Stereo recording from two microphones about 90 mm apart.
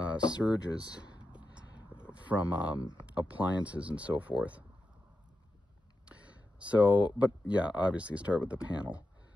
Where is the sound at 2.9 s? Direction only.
15° right (ahead or behind).